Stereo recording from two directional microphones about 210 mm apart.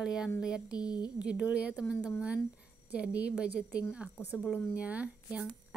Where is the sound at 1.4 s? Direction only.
5° right (ahead or behind).